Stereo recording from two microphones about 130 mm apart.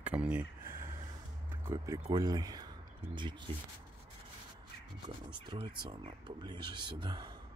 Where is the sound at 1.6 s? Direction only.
20° right (ahead or behind); by 3.4 s 40° right (ahead or behind).